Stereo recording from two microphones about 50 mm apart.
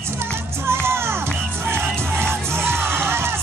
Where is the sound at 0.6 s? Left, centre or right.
Right.